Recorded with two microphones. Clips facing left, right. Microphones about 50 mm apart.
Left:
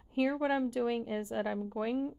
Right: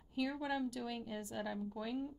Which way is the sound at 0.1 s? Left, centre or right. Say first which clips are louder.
Left 8 dB; left.